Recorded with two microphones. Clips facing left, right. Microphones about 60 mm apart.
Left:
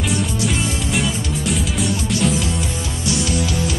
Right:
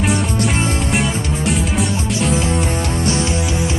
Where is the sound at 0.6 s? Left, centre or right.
Right.